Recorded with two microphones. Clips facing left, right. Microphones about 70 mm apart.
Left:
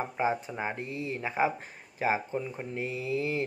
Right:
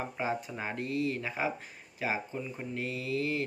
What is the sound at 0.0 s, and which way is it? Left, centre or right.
Speech, left.